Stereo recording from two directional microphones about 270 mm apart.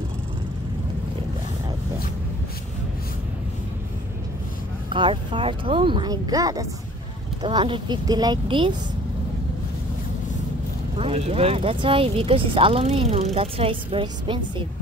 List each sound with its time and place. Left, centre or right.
4.8 s speech: centre
11.0 s speech: right